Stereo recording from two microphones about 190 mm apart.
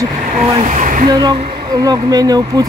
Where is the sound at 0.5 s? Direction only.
35° right (ahead or behind).